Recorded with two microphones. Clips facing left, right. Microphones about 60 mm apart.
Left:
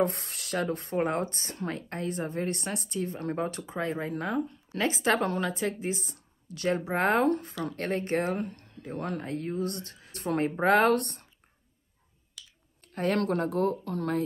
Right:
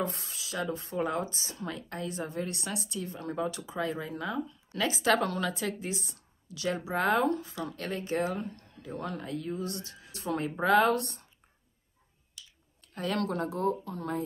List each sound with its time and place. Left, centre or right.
0.0 s speech: left
0.6 s a woman's voice: left
12.9 s a woman's voice: left
13.8 s speech: left